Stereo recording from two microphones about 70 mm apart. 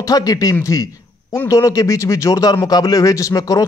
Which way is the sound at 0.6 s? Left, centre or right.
Left.